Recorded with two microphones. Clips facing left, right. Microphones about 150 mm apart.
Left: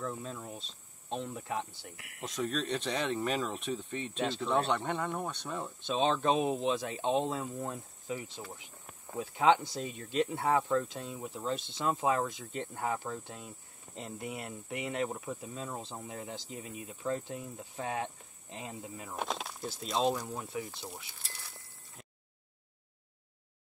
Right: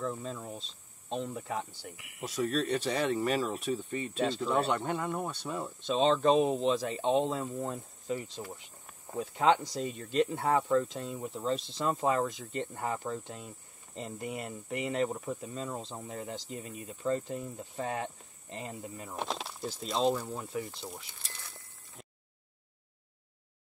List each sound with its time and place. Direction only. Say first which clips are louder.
0.0 s speech: right 3 dB; 5° left (ahead or behind)
20.7 s speech: right 1 dB; centre (ahead or behind)
21.2 s a sound: right 1 dB; 20° right (ahead or behind)